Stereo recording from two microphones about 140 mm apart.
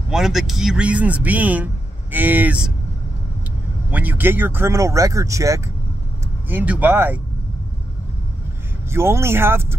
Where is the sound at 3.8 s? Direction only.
10° right (ahead or behind).